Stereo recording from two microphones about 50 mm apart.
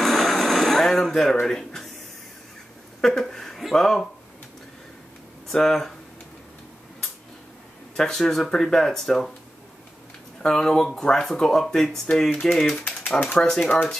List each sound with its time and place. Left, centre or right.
0.0 s a sound: centre
1.4 s speech: centre
3.0 s speech: centre
5.5 s speech: centre
7.9 s speech: centre
10.4 s speech: centre